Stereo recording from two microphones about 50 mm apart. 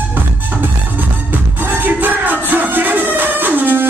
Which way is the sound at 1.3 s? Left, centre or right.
Right.